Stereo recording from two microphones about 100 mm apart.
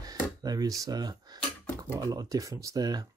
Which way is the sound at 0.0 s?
40° right (ahead or behind).